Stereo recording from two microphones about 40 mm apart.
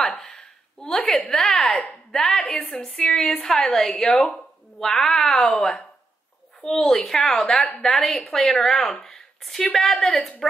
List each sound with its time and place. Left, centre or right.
0.0 s a sound: centre
0.9 s a woman's voice: left
1.3 s speech: centre
2.4 s a woman's voice: left
2.8 s speech: centre
6.6 s speech: centre